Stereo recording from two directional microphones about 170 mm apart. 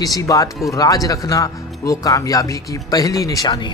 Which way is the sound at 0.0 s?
20° left (ahead or behind).